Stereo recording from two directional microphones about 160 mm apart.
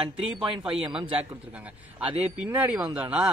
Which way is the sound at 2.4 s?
10° right (ahead or behind).